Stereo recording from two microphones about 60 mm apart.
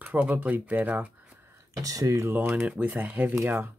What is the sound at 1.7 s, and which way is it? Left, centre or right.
Speech, right.